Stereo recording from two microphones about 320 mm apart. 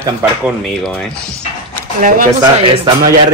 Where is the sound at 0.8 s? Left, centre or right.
Centre.